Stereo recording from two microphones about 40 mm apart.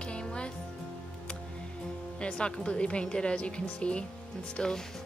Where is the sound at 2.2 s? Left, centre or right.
Left.